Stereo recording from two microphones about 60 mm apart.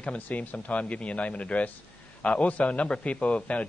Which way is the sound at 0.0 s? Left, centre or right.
Left.